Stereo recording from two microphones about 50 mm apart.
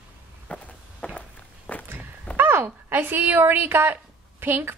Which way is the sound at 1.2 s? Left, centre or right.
Left.